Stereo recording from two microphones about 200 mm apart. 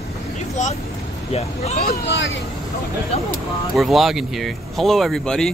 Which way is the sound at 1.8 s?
55° left (ahead or behind).